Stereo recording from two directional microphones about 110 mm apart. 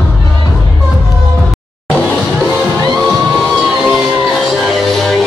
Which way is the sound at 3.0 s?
Centre (ahead or behind).